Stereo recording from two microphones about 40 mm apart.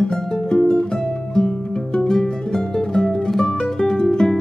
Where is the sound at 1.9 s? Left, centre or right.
Centre.